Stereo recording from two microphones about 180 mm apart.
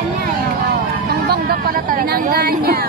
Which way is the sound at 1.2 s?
60° right (ahead or behind).